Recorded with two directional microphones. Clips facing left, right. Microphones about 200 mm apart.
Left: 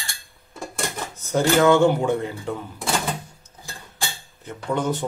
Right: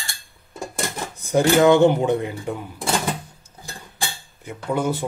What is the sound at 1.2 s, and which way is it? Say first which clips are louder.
Speech: right 2 dB; 15° right (ahead or behind).